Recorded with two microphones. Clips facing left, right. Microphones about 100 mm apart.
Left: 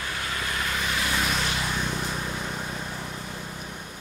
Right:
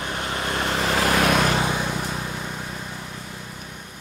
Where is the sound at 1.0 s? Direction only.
70° right (ahead or behind); by 1.7 s 55° right (ahead or behind).